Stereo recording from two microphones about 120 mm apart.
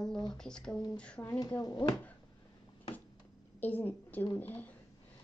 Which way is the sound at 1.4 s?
35° left (ahead or behind).